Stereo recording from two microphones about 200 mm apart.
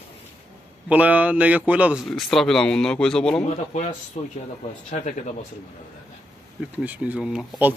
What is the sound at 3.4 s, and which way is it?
Speech, 35° left (ahead or behind).